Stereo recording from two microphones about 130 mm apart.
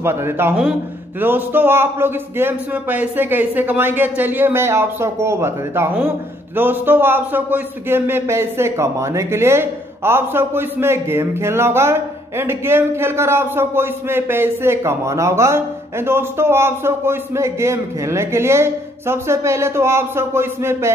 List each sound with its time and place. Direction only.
0.0 s a man's voice: 20° right (ahead or behind)